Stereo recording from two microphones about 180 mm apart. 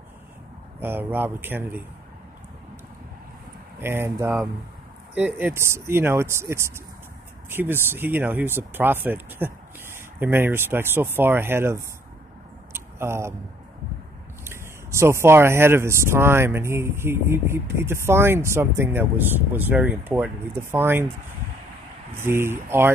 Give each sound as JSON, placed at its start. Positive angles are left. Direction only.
{"t": 0.7, "sound": "speech", "side_deg": -10}
{"t": 3.8, "sound": "speech", "side_deg": -15}
{"t": 12.7, "sound": "a sound", "side_deg": -15}
{"t": 14.4, "sound": "speech", "side_deg": -15}
{"t": 22.1, "sound": "speech", "side_deg": -15}